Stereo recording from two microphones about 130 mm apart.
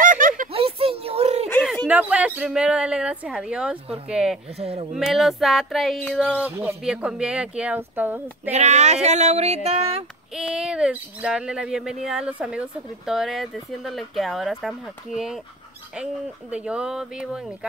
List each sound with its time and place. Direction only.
0.0 s a sound: 90° right
0.5 s a sound: 45° right (ahead or behind)
1.9 s speech: 10° right (ahead or behind)
4.6 s speech: 50° right (ahead or behind)
4.9 s speech: centre (ahead or behind); by 6.8 s 15° right (ahead or behind)
6.8 s speech: 5° right (ahead or behind)
8.5 s speech: 60° right (ahead or behind)
10.3 s speech: 5° right (ahead or behind)
16.5 s speech: 5° right (ahead or behind)